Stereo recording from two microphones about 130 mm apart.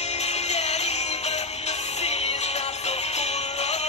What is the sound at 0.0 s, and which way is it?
Music, 55° left (ahead or behind).